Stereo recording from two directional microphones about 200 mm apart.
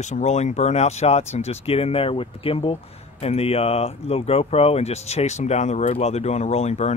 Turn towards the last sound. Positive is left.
turn(degrees=35)  # may be behind; listen again after turning